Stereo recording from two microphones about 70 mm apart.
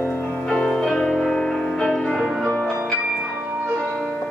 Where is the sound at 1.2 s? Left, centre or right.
Centre.